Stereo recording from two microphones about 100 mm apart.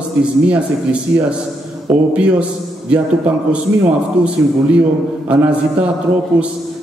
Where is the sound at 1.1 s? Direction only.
25° right (ahead or behind).